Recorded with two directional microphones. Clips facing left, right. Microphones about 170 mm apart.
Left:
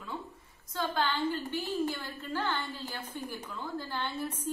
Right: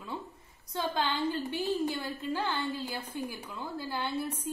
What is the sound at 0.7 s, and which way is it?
A woman's voice, 15° right (ahead or behind).